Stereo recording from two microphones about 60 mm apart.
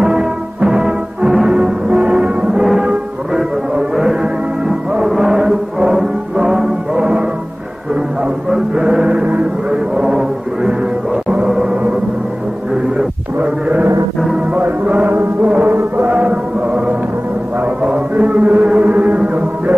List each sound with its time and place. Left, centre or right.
0.0 s music: centre
1.9 s music: right
13.4 s a sound: right
14.5 s music: right
18.1 s music: right